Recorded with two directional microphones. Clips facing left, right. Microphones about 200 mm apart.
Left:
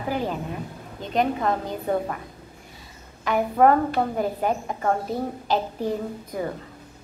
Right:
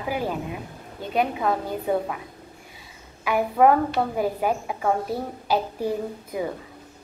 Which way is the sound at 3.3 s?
5° right (ahead or behind).